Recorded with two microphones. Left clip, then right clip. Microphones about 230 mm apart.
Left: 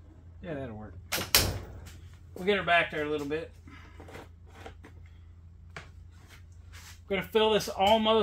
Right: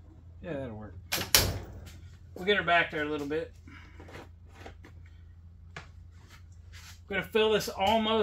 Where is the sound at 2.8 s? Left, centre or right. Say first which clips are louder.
Even; centre.